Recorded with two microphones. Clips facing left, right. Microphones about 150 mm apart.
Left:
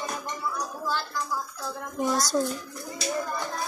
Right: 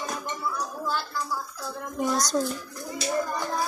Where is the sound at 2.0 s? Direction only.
Centre (ahead or behind).